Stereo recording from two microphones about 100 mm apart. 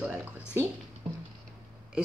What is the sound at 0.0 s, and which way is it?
Speech, 15° right (ahead or behind).